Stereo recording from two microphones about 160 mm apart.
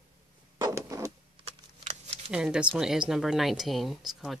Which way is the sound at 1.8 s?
45° right (ahead or behind).